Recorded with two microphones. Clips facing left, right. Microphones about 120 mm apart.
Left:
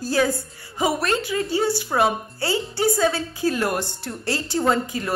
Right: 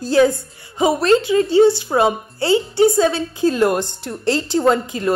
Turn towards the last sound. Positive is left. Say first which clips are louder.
# right 5 dB
turn(degrees=-20)  # may be behind; listen again after turning